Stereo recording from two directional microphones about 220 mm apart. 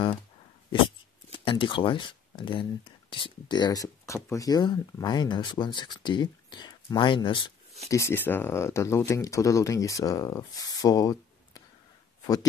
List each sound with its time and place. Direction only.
1.3 s speech: 25° left (ahead or behind)